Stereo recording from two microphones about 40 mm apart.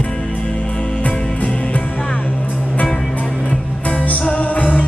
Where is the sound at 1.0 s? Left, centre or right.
Left.